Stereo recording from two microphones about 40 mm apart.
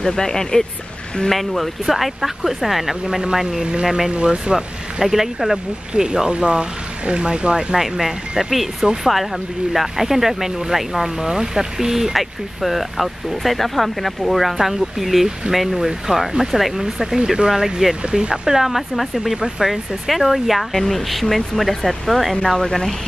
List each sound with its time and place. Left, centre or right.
0.0 s speech: centre
1.3 s speech: centre
5.0 s speech: centre
6.0 s speech: right
7.7 s speech: centre
20.1 s speech: centre